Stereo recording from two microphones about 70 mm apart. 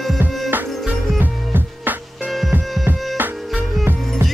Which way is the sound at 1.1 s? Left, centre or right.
Right.